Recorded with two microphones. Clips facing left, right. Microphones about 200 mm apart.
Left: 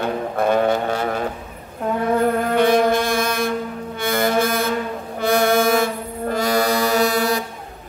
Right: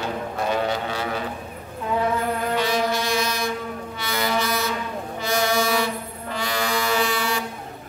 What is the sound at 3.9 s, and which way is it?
Music, 50° left (ahead or behind).